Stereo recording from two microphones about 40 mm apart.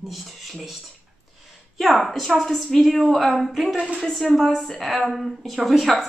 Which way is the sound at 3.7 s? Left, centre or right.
Right.